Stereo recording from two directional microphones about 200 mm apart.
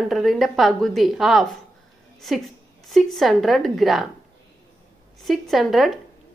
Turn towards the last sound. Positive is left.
turn(degrees=0)  # may be behind; listen again after turning